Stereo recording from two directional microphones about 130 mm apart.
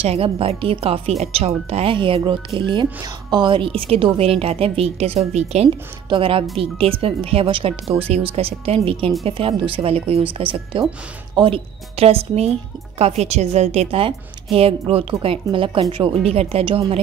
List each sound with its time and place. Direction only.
0.0 s speech: 45° right (ahead or behind)
6.0 s speech: 40° right (ahead or behind)